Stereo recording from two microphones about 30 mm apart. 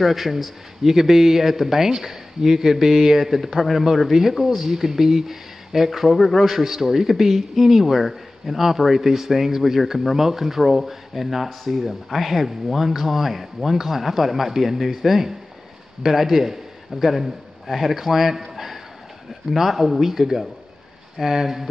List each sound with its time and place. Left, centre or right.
0.0 s a man's voice: centre
19.5 s a man's voice: centre